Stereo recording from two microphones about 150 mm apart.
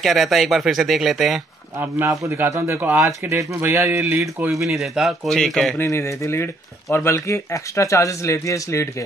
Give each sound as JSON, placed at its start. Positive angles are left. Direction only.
{"t": 0.0, "sound": "speech", "side_deg": 0}
{"t": 1.8, "sound": "a man's voice", "side_deg": -15}
{"t": 4.2, "sound": "speech", "side_deg": 0}
{"t": 5.8, "sound": "speech", "side_deg": 20}